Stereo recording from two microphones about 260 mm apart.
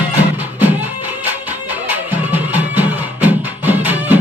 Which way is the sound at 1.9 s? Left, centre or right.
Centre.